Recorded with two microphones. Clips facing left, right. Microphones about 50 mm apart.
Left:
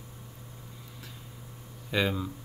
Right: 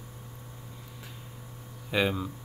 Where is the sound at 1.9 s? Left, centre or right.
Centre.